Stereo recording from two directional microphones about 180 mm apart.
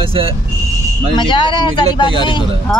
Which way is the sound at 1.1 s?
25° left (ahead or behind).